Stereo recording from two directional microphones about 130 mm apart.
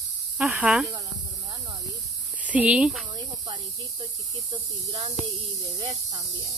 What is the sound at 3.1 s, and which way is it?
Speech, 35° right (ahead or behind).